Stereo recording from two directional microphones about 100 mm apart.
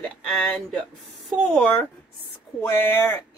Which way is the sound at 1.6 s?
15° left (ahead or behind).